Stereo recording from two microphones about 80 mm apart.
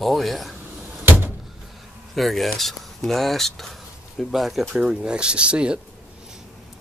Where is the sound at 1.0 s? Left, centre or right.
Right.